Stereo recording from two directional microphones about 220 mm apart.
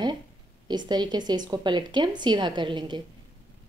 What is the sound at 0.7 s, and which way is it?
A woman's voice, 20° right (ahead or behind).